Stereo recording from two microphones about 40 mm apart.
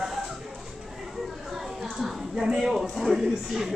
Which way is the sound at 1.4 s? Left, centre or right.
Centre.